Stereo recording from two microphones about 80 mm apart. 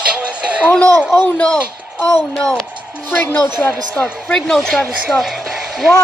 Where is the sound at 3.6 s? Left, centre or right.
Left.